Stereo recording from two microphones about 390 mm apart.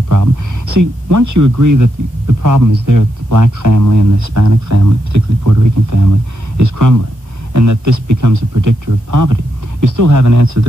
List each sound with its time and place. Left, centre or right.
0.1 s speech: right